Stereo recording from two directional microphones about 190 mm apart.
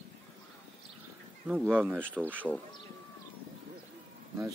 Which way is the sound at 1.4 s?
10° right (ahead or behind).